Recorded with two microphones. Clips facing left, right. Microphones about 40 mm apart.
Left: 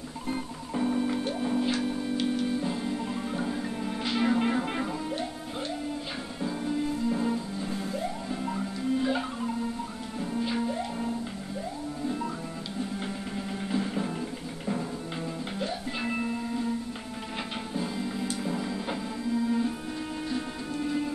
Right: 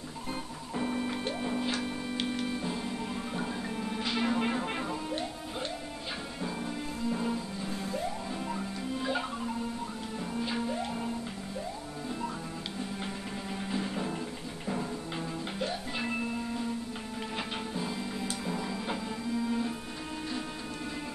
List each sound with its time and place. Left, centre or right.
0.3 s music: centre
2.1 s music: centre
2.6 s music: centre
6.4 s music: centre
10.3 s music: centre
13.7 s music: centre
17.7 s music: centre